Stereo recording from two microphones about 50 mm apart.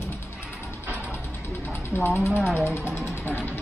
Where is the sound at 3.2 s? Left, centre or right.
Left.